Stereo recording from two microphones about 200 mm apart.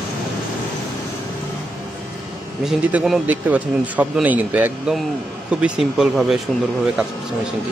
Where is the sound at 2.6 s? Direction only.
Centre (ahead or behind).